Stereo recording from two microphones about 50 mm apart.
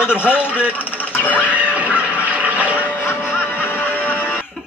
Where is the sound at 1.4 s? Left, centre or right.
Right.